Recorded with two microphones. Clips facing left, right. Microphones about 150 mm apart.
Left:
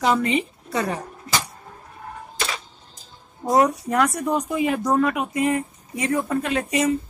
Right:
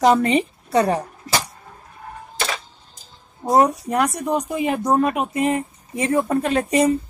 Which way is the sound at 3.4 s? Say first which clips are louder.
Right 2 dB; 30° right (ahead or behind).